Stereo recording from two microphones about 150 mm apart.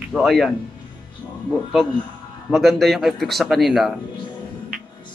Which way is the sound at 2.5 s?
Centre (ahead or behind).